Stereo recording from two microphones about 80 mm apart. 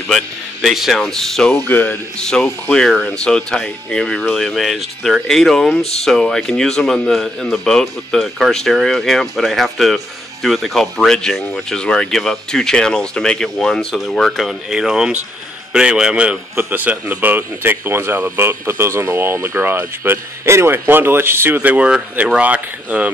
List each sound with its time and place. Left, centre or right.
0.1 s a man's voice: centre
1.7 s a man's voice: left
2.1 s speech: centre
16.5 s speech: right
21.5 s speech: centre